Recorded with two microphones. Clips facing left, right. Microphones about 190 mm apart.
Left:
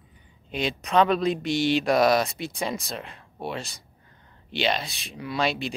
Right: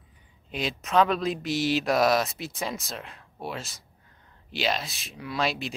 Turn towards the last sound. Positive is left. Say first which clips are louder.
# left 2 dB
turn(degrees=0)  # may be behind; listen again after turning